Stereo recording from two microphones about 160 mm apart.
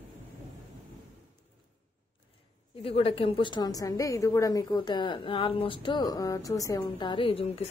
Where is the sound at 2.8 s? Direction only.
35° left (ahead or behind).